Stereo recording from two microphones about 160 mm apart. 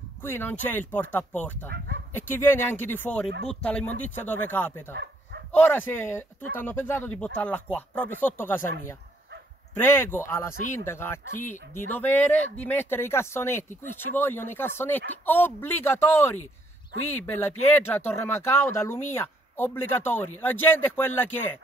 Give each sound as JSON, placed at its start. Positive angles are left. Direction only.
{"t": 0.2, "sound": "speech", "side_deg": 15}
{"t": 4.9, "sound": "bow-wow", "side_deg": -90}
{"t": 5.5, "sound": "speech", "side_deg": 10}
{"t": 9.8, "sound": "speech", "side_deg": 15}